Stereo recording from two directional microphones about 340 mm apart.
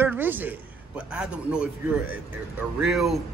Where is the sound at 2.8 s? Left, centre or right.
Centre.